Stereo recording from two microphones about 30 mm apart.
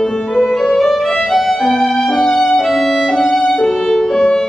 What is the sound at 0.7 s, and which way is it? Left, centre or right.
Music, centre.